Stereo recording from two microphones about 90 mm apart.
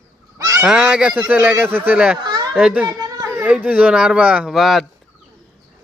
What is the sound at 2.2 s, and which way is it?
Children playing, 50° right (ahead or behind).